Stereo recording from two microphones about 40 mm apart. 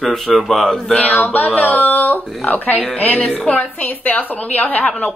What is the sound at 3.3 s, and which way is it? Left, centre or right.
Speech, left.